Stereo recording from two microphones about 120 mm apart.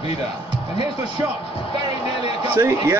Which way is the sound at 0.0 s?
55° left (ahead or behind).